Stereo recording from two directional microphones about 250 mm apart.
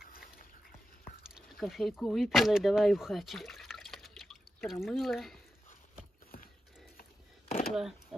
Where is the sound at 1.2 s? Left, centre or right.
Centre.